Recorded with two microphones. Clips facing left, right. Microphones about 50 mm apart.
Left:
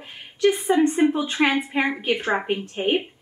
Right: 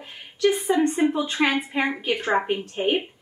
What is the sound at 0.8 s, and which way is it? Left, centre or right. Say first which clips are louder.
A woman's voice: left 2 dB; centre.